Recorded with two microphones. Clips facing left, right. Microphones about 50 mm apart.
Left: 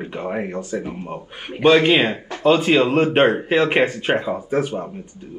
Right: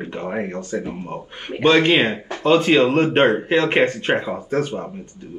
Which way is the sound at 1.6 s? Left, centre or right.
Centre.